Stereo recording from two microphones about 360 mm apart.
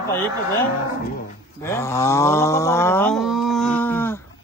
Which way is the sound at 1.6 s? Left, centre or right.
Centre.